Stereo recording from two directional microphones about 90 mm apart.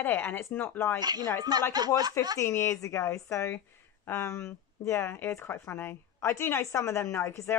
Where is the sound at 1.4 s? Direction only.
50° right (ahead or behind).